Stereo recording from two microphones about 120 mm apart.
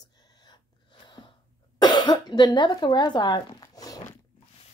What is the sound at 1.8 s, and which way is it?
Speech, 35° left (ahead or behind).